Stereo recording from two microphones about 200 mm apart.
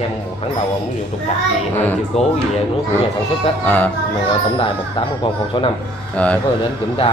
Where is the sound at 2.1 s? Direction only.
30° left (ahead or behind).